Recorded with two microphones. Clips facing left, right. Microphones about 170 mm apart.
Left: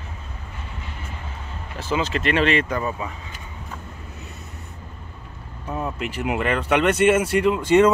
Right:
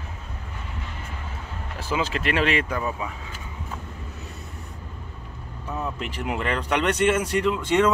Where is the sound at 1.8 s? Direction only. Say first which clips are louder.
Left 3 dB; 10° right (ahead or behind).